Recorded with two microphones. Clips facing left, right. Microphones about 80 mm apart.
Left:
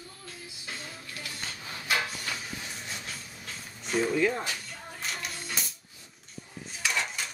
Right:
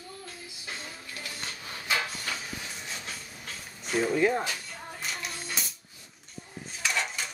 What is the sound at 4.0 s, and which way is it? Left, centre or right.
Speech, centre.